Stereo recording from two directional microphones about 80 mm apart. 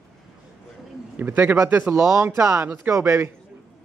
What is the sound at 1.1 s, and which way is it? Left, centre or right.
Speech, right.